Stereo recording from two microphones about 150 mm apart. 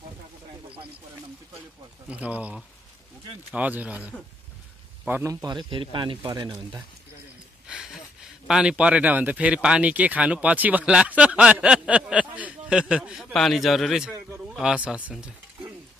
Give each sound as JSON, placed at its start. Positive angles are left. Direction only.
{"t": 2.0, "sound": "a man's voice", "side_deg": -10}
{"t": 7.6, "sound": "speech", "side_deg": -5}
{"t": 15.0, "sound": "stir", "side_deg": -10}